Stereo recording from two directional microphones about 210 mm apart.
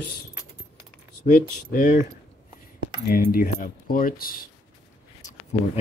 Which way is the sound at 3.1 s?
40° left (ahead or behind).